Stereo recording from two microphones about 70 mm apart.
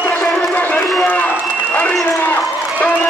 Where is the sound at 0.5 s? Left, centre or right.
Left.